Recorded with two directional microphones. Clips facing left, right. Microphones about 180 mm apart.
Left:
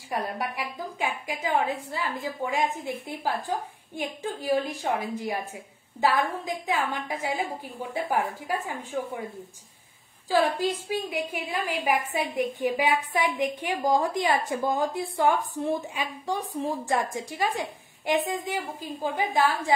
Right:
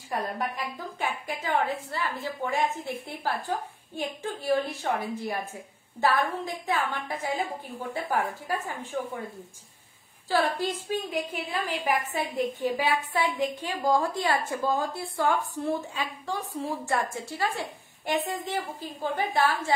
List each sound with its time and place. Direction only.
0.1 s a woman's voice: 10° left (ahead or behind)
10.3 s a woman's voice: 15° left (ahead or behind)